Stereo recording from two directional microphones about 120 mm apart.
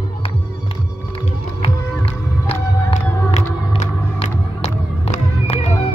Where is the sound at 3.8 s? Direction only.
60° left (ahead or behind).